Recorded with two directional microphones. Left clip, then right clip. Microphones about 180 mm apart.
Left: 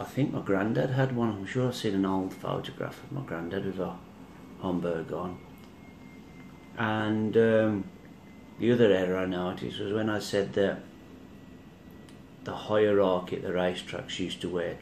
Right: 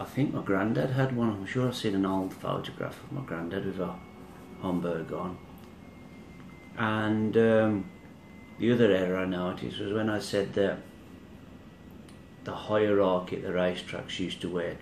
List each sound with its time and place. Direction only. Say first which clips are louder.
0.0 s speech: even; centre (ahead or behind)
6.8 s speech: even; 5° right (ahead or behind)
12.4 s speech: left 1 dB; centre (ahead or behind)